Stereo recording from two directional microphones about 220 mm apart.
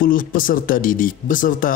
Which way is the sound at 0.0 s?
40° left (ahead or behind).